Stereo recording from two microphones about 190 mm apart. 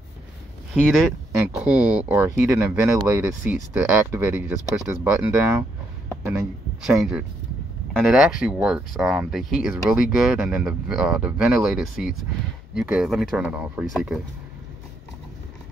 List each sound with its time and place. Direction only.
1.5 s speech: 5° right (ahead or behind)
6.9 s speech: 5° right (ahead or behind)